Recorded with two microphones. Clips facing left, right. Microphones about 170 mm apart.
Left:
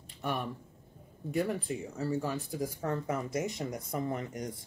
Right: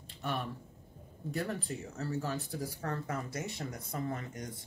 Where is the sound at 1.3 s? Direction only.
10° left (ahead or behind).